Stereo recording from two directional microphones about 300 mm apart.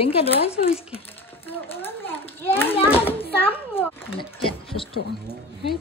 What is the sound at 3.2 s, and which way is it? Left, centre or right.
A child's voice, centre.